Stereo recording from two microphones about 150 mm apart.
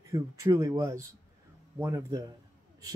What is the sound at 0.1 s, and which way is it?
Speech, 20° right (ahead or behind).